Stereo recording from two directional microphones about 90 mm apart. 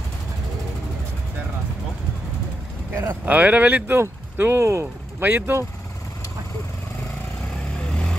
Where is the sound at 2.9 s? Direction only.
20° right (ahead or behind).